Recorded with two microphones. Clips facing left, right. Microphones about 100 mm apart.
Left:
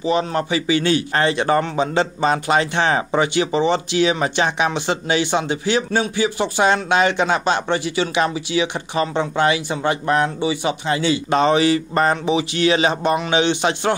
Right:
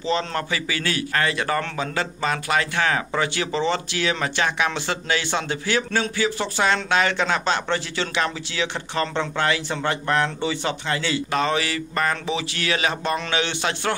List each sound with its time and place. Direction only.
0.0 s speech: 15° left (ahead or behind)